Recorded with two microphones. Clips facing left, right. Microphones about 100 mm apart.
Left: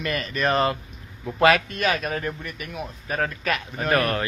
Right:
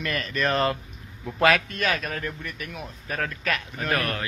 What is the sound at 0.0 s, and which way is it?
Speech, 10° left (ahead or behind).